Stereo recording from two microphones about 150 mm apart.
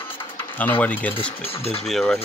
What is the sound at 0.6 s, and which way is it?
Speech, 10° left (ahead or behind).